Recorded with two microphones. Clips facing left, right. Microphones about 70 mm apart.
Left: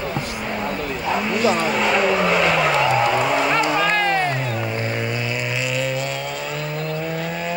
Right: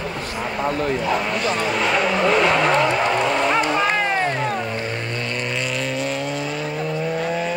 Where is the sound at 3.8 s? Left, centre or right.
Centre.